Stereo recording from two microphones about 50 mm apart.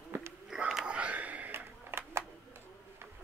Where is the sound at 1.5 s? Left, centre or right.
Right.